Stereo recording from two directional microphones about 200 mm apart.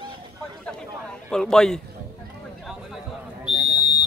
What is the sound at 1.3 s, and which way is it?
Speech, 5° left (ahead or behind).